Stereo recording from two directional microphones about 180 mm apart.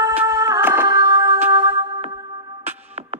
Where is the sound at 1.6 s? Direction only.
25° right (ahead or behind).